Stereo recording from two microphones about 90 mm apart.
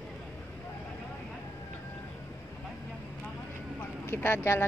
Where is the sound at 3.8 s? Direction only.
25° left (ahead or behind).